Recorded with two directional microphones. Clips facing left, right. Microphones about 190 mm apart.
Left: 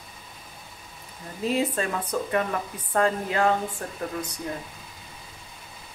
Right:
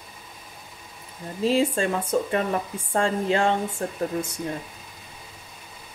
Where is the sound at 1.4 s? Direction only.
30° right (ahead or behind).